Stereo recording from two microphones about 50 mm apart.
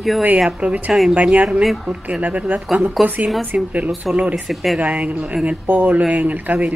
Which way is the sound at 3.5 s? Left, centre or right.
Right.